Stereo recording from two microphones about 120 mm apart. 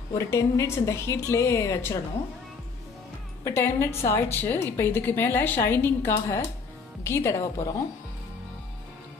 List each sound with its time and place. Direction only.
0.1 s a woman's voice: 25° left (ahead or behind)
3.4 s a woman's voice: 20° left (ahead or behind)